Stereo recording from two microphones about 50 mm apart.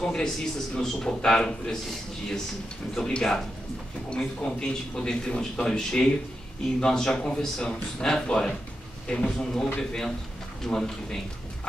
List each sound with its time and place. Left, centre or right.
0.0 s a man's voice: centre